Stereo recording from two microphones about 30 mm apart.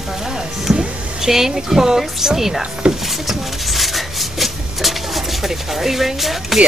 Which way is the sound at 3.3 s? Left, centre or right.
Centre.